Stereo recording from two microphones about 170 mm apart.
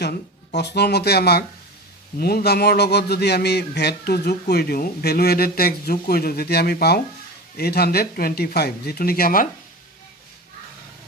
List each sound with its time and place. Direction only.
0.6 s speech: 80° left; by 9.5 s 60° left (ahead or behind)